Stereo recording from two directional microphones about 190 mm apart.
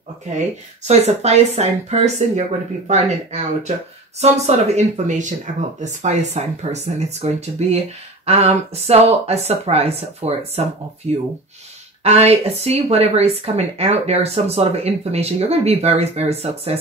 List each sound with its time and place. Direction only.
0.8 s a woman's voice: 35° right (ahead or behind)